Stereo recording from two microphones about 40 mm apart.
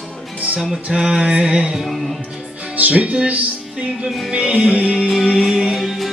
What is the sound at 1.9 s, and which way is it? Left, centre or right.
Music, centre.